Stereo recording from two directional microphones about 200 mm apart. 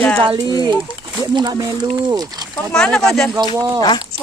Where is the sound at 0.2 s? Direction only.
25° right (ahead or behind).